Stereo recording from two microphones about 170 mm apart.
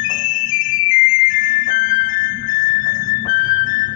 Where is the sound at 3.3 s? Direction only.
50° left (ahead or behind).